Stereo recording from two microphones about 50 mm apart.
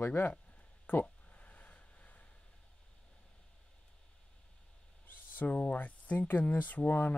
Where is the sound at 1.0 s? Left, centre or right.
Left.